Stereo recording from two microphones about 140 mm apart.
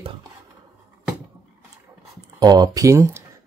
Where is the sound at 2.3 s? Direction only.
30° right (ahead or behind).